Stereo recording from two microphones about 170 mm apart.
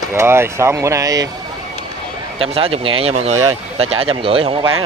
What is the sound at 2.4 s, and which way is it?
Speech, 35° right (ahead or behind).